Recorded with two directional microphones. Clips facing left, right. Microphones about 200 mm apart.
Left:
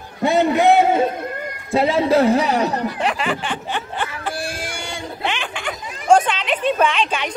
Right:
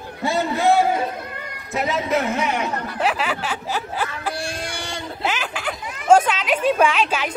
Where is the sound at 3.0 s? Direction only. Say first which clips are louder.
Left 1 dB; 5° right (ahead or behind).